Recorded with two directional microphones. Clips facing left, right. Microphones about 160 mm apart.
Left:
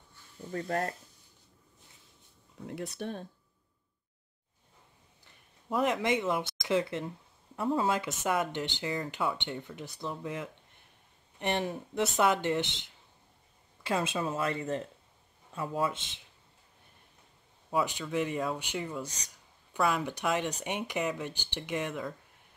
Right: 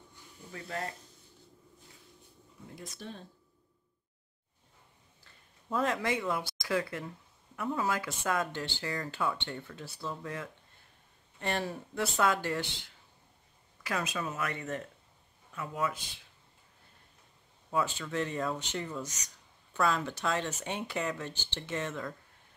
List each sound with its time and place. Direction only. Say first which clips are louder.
0.5 s speech: left 6 dB; 45° left (ahead or behind)
2.6 s speech: left 8 dB; 65° left (ahead or behind)
5.2 s speech: left 1 dB; 15° left (ahead or behind)
17.6 s speech: left 1 dB; 15° left (ahead or behind)